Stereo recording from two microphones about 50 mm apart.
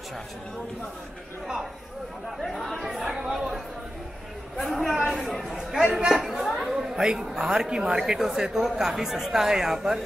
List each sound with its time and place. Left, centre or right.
2.5 s speech: centre
3.0 s speech: centre
4.6 s speech: centre
5.9 s speech: centre
6.1 s speech: centre
6.7 s chatter: centre
7.4 s speech: centre